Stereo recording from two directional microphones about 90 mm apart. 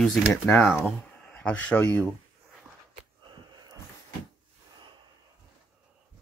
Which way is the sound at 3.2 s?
55° right (ahead or behind).